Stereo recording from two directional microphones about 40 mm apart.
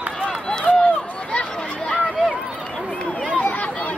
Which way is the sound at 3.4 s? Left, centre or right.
Left.